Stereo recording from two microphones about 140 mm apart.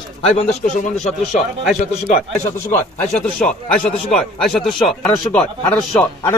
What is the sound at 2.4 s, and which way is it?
Speech, 15° left (ahead or behind).